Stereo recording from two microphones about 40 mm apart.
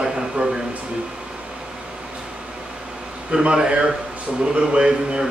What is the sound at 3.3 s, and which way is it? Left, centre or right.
Speech, centre.